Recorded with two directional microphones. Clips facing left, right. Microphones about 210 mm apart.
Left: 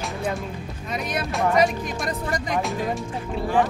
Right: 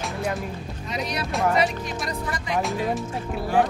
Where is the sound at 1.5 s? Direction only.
45° left (ahead or behind).